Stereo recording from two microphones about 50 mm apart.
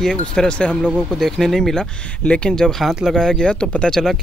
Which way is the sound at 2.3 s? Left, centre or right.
Left.